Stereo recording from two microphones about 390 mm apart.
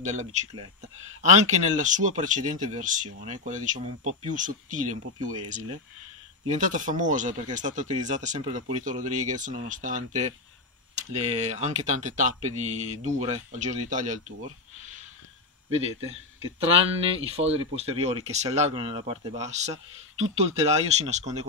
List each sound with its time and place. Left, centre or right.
0.0 s speech: centre
6.5 s speech: centre
15.7 s speech: centre